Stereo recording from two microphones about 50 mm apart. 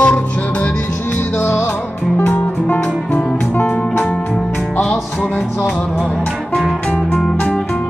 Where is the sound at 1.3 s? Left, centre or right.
Left.